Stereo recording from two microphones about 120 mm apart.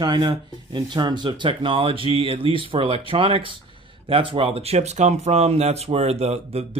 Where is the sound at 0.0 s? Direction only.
40° right (ahead or behind).